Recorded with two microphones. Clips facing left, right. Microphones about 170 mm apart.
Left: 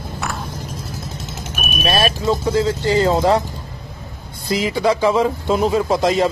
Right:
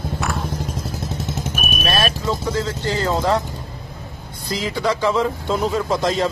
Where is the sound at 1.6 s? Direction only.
Centre (ahead or behind).